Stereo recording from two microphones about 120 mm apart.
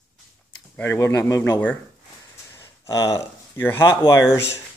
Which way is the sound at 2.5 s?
25° left (ahead or behind).